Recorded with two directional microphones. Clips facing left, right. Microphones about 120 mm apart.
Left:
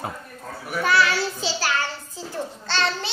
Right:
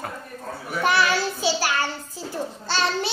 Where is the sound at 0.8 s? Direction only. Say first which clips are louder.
Even; 20° right (ahead or behind).